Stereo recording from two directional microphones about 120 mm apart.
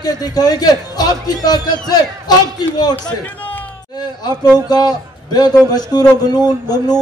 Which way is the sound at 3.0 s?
15° left (ahead or behind).